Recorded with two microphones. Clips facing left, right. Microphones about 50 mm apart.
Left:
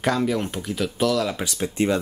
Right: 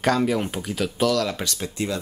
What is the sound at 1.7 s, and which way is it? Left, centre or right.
Speech, left.